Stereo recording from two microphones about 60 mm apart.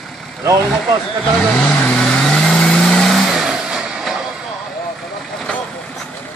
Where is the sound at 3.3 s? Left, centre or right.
Centre.